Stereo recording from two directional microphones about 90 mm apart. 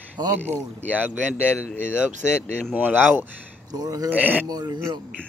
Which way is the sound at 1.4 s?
20° left (ahead or behind).